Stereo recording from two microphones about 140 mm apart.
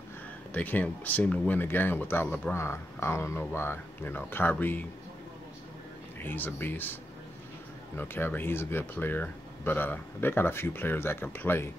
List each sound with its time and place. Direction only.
0.5 s speech: 10° left (ahead or behind)
6.2 s speech: 15° left (ahead or behind)
8.0 s speech: 15° left (ahead or behind)